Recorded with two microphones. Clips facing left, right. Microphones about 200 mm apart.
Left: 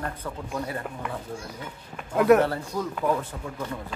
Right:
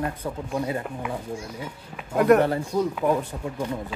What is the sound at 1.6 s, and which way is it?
Speech, centre (ahead or behind).